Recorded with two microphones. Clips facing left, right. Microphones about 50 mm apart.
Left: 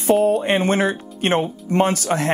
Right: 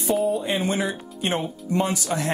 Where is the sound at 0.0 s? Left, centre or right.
Left.